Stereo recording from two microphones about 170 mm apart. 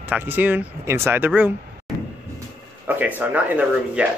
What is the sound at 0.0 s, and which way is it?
Speech, 10° right (ahead or behind).